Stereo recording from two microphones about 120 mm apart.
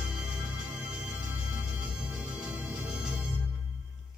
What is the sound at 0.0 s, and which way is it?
Music, 5° right (ahead or behind).